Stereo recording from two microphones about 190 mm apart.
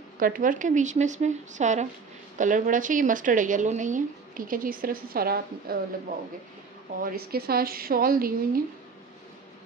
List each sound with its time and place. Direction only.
0.2 s a woman's voice: 45° right (ahead or behind)
7.0 s a woman's voice: 50° right (ahead or behind)